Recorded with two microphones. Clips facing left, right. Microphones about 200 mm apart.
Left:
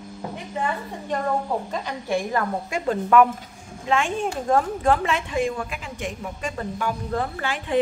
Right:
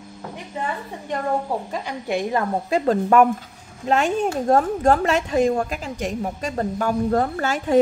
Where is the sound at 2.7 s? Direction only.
35° right (ahead or behind).